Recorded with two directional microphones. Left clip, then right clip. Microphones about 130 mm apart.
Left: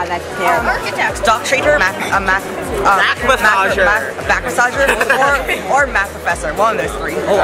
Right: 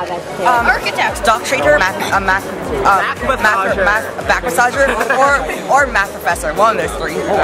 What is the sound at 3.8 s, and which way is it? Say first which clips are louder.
Speech: left 1 dB; 15° right (ahead or behind).